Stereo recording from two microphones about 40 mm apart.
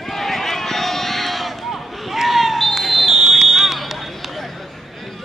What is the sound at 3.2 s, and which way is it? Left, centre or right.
Smoke detector, centre.